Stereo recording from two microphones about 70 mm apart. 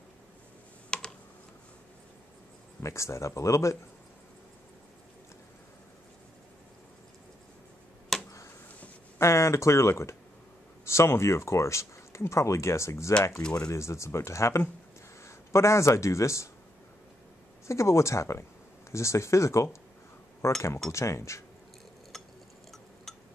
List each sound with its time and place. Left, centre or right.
0.8 s computer keyboard: centre
2.8 s speech: left
8.1 s tick-tock: centre
9.2 s speech: left
13.4 s speech: centre
13.7 s speech: left
17.6 s speech: left